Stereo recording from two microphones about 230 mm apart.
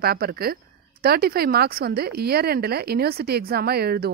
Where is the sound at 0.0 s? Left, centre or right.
Right.